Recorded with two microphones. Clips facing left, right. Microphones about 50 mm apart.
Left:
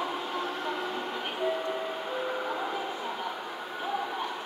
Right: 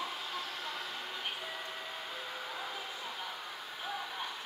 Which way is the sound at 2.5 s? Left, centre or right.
Left.